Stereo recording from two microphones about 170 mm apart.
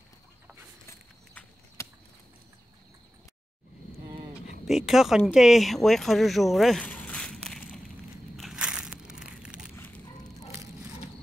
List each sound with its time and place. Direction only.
1.8 s a sound: 15° left (ahead or behind)
4.6 s speech: centre (ahead or behind)
8.4 s biting: 5° right (ahead or behind)